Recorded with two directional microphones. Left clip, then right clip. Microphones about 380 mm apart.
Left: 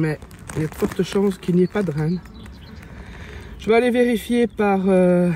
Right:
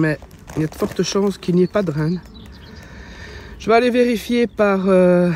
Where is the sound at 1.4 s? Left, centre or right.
Centre.